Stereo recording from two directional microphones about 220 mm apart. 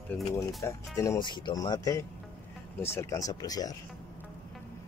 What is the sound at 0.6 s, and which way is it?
Speech, 15° left (ahead or behind).